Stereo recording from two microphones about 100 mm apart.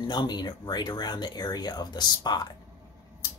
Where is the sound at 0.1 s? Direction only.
45° left (ahead or behind).